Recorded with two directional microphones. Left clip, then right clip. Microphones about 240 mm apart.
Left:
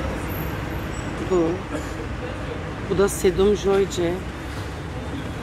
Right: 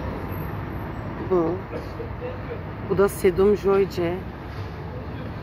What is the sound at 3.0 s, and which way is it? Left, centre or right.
Speech, centre.